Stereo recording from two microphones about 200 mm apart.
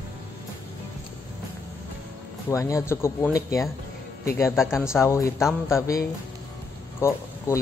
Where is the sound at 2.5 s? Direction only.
15° left (ahead or behind).